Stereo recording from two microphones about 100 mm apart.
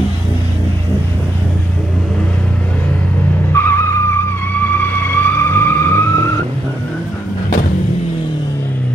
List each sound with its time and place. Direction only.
3.5 s vehicle: 25° left (ahead or behind)